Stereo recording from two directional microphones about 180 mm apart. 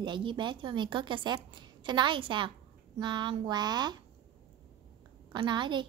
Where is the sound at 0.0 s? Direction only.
25° right (ahead or behind).